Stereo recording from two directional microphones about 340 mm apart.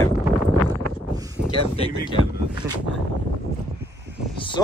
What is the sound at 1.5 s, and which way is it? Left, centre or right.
Speech, centre.